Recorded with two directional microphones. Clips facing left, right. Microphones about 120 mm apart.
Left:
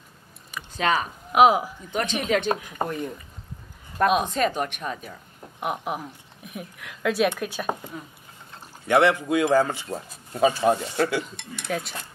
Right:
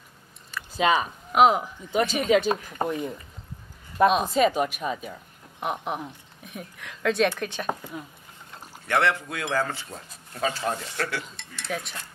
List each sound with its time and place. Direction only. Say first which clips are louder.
0.5 s a sound: right 1 dB; 15° left (ahead or behind)
1.0 s speech: left 5 dB; 5° left (ahead or behind)
8.8 s speech: left 5 dB; 15° left (ahead or behind)